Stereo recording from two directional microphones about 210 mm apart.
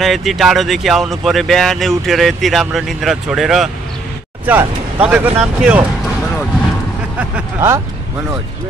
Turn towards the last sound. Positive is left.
turn(degrees=-15)  # may be behind; listen again after turning